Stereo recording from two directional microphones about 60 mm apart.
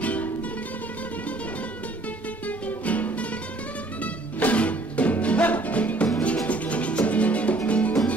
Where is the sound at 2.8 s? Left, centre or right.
Left.